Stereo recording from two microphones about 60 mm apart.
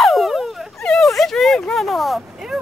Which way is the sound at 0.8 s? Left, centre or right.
Centre.